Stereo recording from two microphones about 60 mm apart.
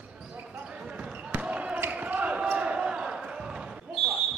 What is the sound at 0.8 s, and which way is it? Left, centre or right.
Basketball bounce, centre.